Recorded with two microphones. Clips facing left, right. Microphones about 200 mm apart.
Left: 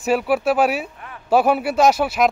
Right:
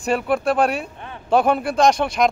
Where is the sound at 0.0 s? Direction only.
5° left (ahead or behind).